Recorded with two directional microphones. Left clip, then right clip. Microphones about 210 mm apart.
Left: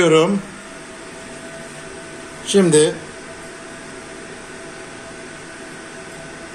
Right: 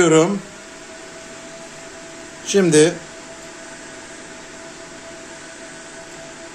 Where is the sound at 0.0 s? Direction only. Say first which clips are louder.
Even; 35° right (ahead or behind).